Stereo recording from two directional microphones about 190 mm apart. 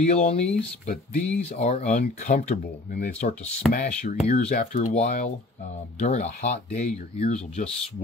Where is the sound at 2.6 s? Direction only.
50° left (ahead or behind).